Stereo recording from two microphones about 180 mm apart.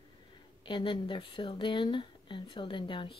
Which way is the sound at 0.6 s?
25° left (ahead or behind).